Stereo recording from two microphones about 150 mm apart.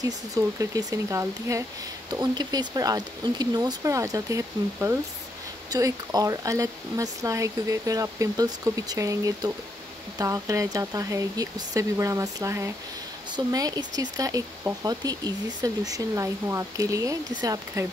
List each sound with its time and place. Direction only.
0.0 s speech: 25° right (ahead or behind)